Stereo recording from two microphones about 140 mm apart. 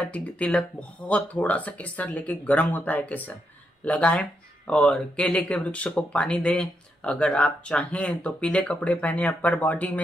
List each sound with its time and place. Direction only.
0.0 s speech: 10° left (ahead or behind)